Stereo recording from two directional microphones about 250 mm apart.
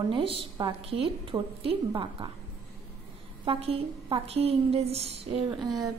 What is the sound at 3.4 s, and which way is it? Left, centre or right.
A woman's voice, right.